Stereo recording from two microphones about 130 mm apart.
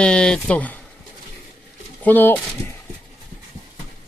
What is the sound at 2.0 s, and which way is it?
Speech, 15° left (ahead or behind).